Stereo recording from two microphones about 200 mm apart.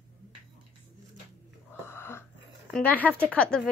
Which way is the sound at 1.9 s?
10° left (ahead or behind).